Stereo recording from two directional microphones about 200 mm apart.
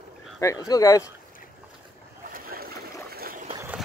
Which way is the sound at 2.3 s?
50° right (ahead or behind).